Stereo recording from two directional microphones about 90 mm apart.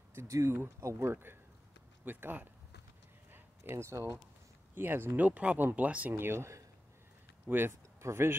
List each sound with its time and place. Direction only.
0.1 s speech: 35° right (ahead or behind)
3.3 s a sound: 25° right (ahead or behind)
4.7 s speech: 25° right (ahead or behind)
6.1 s speech: 25° right (ahead or behind)